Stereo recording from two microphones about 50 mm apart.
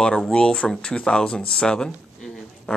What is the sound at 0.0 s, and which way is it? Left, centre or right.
Speech, centre.